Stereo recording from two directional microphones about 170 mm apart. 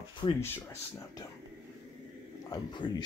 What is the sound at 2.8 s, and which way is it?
Speech, 25° left (ahead or behind).